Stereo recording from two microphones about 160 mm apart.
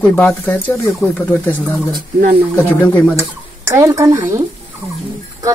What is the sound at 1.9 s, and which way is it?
Speech, 55° right (ahead or behind).